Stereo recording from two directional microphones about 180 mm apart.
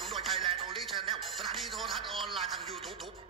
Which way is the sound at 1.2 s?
Centre (ahead or behind).